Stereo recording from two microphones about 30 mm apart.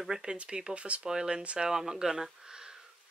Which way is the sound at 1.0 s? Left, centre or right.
Right.